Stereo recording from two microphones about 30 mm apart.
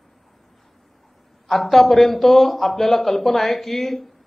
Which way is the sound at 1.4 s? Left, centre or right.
Centre.